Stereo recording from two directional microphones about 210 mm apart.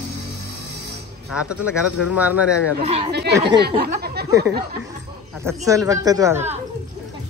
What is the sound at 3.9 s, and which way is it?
Speech, 45° right (ahead or behind).